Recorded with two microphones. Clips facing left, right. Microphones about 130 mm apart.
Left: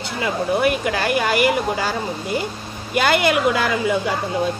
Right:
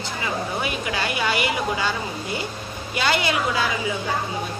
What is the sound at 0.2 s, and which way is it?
A woman's voice, 55° left (ahead or behind).